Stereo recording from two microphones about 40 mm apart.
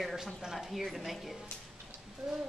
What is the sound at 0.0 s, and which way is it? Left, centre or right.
A woman's voice, centre.